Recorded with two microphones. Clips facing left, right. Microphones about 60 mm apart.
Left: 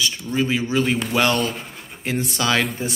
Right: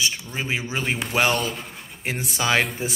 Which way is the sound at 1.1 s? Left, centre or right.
Centre.